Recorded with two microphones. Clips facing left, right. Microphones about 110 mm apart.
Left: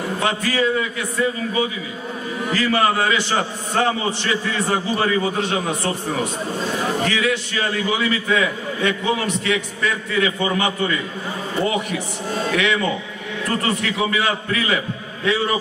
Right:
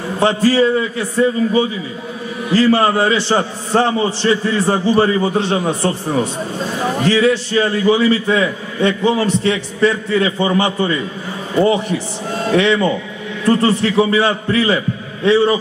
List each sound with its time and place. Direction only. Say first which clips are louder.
0.2 s a man's voice: right 9 dB; 30° right (ahead or behind)
7.1 s a man's voice: right 8 dB; 30° right (ahead or behind)
12.4 s a man's voice: right 7 dB; 30° right (ahead or behind)